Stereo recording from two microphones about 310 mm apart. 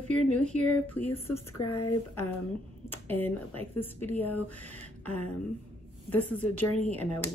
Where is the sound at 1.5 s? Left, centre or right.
Left.